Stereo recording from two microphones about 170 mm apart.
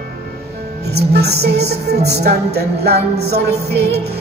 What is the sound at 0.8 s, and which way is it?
Music, 75° right (ahead or behind).